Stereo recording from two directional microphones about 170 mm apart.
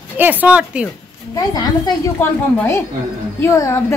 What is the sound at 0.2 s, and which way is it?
Speech, 10° right (ahead or behind).